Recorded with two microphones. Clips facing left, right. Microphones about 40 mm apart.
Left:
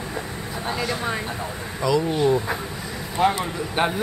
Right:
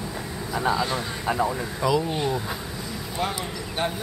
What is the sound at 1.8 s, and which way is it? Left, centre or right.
Speech, centre.